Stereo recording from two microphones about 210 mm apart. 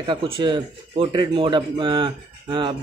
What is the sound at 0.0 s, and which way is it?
Speech, 20° right (ahead or behind).